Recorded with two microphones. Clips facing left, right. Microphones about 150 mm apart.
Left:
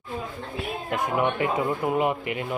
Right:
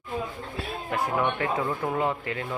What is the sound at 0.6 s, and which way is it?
Speech, 15° left (ahead or behind).